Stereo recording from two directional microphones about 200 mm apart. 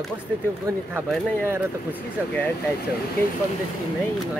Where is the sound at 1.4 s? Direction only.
10° right (ahead or behind).